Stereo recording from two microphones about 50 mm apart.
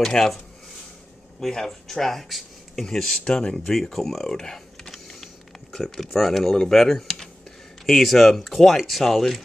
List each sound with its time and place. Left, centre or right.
0.0 s speech: centre
1.4 s speech: centre
3.7 s speech: centre